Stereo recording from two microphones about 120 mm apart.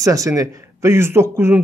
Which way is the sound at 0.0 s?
25° right (ahead or behind).